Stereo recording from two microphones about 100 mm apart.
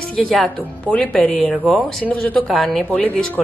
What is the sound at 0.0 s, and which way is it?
Speech, 5° left (ahead or behind).